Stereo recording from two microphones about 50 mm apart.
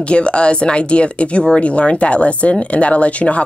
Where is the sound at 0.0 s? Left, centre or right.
Left.